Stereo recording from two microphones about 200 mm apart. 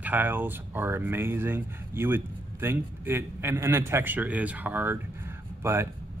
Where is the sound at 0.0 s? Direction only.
10° right (ahead or behind).